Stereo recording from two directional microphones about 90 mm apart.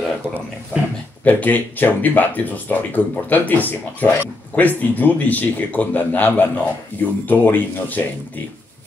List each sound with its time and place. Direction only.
1.2 s speech: 20° left (ahead or behind)